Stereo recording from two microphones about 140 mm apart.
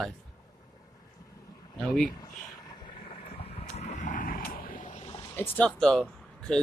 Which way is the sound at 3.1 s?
45° left (ahead or behind).